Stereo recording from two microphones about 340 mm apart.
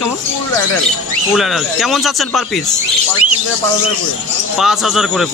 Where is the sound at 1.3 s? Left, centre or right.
Centre.